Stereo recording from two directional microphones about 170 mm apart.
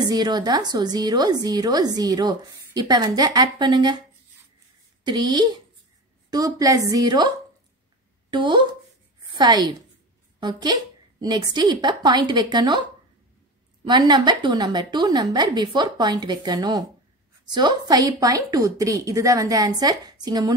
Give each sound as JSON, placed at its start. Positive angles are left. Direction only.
{"t": 0.0, "sound": "a woman's voice", "side_deg": -25}
{"t": 5.0, "sound": "a woman's voice", "side_deg": -25}
{"t": 13.8, "sound": "a woman's voice", "side_deg": -25}